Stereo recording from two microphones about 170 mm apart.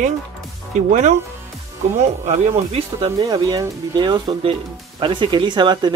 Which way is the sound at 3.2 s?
20° right (ahead or behind).